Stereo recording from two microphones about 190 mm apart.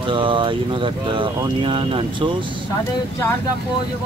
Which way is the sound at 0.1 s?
25° right (ahead or behind).